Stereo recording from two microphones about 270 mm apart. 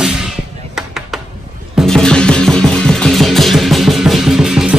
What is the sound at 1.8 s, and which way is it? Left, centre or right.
Music, centre.